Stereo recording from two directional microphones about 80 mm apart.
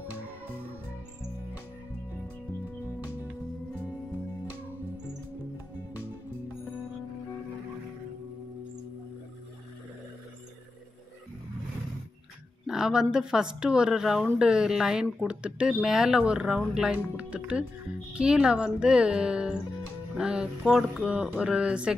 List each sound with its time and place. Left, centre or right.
12.6 s speech: centre